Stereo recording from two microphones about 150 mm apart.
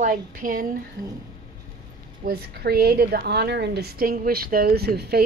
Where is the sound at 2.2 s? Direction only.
90° right.